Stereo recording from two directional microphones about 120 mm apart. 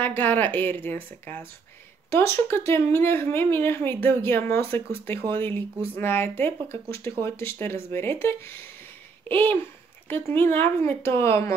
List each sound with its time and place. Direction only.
0.0 s speech: 15° left (ahead or behind)
2.0 s speech: 20° left (ahead or behind)